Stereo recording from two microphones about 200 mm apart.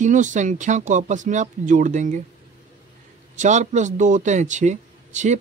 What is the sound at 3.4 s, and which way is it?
Speech, 35° right (ahead or behind).